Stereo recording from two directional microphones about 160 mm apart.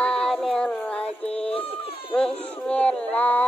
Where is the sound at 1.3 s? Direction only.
40° left (ahead or behind).